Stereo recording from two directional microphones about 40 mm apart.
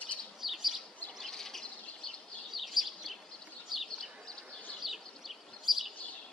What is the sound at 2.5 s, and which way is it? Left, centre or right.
Bird, centre.